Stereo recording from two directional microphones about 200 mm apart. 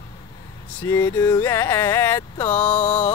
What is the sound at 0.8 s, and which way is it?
Music, 10° left (ahead or behind).